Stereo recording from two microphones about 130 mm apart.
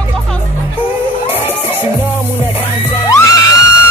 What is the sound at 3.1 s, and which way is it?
Music, 25° left (ahead or behind).